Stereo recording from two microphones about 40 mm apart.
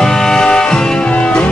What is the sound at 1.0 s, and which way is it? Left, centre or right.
Music, left.